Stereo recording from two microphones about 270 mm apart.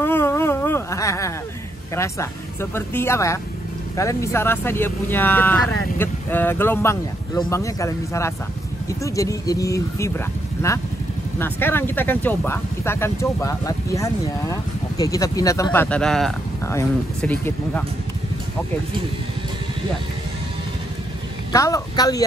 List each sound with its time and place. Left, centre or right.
0.0 s insect: centre
2.0 s speech: centre
21.5 s speech: centre